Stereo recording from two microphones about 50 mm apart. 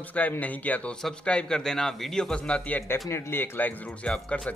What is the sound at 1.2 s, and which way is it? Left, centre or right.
A man's voice, centre.